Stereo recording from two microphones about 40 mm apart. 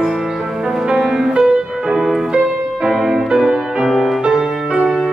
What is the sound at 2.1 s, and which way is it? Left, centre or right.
Music, centre.